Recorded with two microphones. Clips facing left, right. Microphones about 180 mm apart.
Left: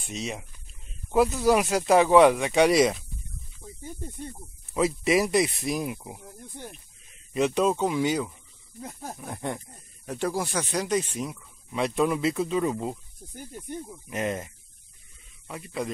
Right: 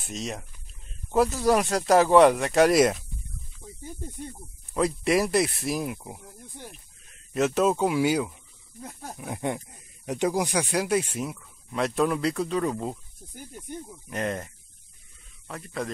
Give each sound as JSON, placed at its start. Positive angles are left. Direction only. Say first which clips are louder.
{"t": 0.0, "sound": "speech", "louder": "even", "side_deg": 0}
{"t": 3.6, "sound": "snake", "louder": "even", "side_deg": 5}
{"t": 4.3, "sound": "speech", "louder": "even", "side_deg": 0}